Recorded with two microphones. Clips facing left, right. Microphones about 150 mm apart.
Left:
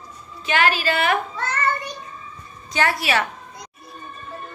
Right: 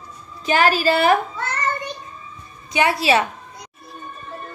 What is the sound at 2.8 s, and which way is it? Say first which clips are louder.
Speech: right 4 dB; 20° right (ahead or behind).